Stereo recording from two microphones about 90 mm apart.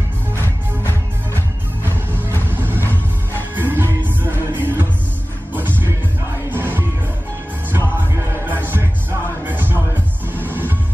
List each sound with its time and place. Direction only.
2.5 s music: 25° right (ahead or behind)
6.5 s music: 25° right (ahead or behind)
8.5 s heart murmur: 20° right (ahead or behind)
9.4 s music: 20° right (ahead or behind)